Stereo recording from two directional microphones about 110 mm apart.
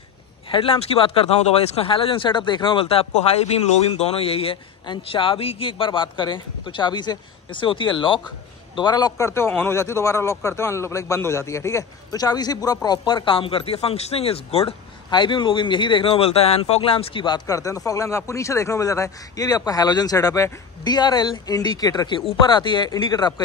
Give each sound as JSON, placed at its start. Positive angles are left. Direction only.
{"t": 0.5, "sound": "a man's voice", "side_deg": 55}
{"t": 3.9, "sound": "speech", "side_deg": 65}
{"t": 4.8, "sound": "a man's voice", "side_deg": 50}
{"t": 9.5, "sound": "a man's voice", "side_deg": 20}
{"t": 15.0, "sound": "a man's voice", "side_deg": 45}
{"t": 17.5, "sound": "a man's voice", "side_deg": 30}